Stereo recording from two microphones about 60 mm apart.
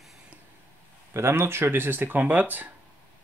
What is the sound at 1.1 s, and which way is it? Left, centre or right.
Speech, right.